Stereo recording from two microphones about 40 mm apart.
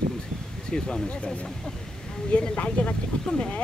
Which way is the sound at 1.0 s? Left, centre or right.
Left.